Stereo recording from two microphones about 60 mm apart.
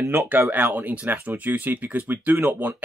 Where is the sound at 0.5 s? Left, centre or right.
Right.